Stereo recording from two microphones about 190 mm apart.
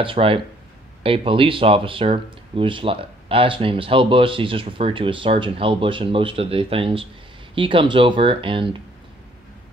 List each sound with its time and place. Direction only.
0.0 s speech: 30° right (ahead or behind)